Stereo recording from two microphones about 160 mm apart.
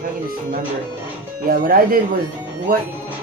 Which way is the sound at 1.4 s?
65° right (ahead or behind).